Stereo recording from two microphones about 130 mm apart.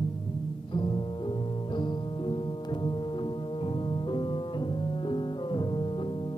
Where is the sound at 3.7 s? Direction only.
40° left (ahead or behind).